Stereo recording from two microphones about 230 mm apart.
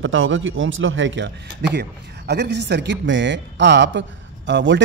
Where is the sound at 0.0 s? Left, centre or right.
Right.